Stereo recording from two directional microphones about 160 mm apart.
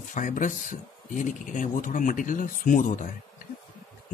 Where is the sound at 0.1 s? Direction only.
55° left (ahead or behind).